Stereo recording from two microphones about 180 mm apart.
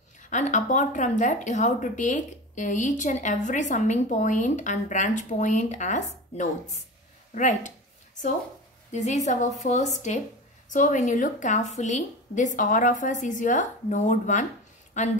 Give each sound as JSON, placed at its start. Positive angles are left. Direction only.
{"t": 0.2, "sound": "speech", "side_deg": 45}
{"t": 7.3, "sound": "a sound", "side_deg": 45}
{"t": 8.9, "sound": "a woman's voice", "side_deg": 40}